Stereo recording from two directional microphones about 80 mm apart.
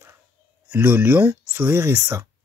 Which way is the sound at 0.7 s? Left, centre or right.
Right.